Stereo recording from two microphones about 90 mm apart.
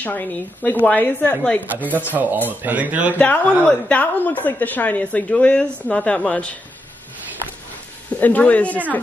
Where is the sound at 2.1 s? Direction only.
20° right (ahead or behind).